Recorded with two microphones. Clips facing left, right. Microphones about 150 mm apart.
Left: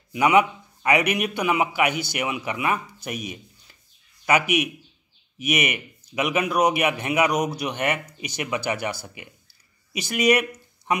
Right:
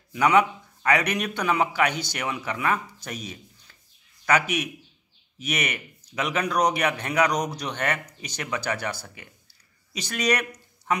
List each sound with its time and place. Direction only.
0.1 s a man's voice: 10° left (ahead or behind)